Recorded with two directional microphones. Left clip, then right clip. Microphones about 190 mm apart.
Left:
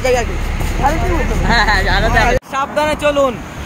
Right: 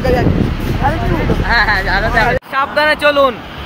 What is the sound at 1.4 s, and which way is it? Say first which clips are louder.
Speech: even; 30° left (ahead or behind).